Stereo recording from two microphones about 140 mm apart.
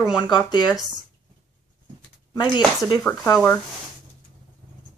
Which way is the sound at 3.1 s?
10° left (ahead or behind).